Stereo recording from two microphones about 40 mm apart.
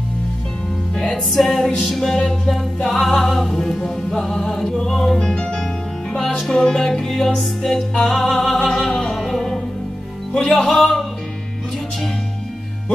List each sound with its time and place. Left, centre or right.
1.3 s music: centre
9.0 s music: centre
10.3 s music: centre